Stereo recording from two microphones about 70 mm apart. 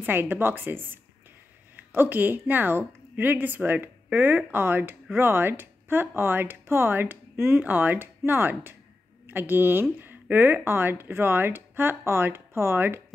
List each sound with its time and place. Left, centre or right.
0.0 s a woman's voice: right